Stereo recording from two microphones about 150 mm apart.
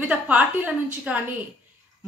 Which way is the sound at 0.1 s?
10° right (ahead or behind).